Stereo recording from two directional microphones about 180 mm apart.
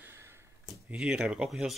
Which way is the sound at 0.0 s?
15° right (ahead or behind).